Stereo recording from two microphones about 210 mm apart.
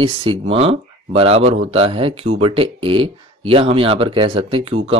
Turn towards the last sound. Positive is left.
turn(degrees=-25)  # may be behind; listen again after turning